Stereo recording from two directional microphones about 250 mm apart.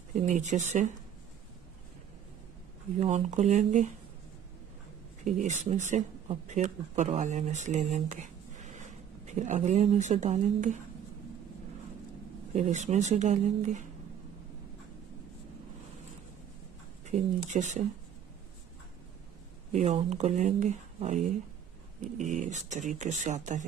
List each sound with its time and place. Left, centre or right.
0.1 s speech: right
3.0 s speech: right
5.4 s speech: right
12.5 s speech: right
17.5 s speech: right
19.7 s speech: right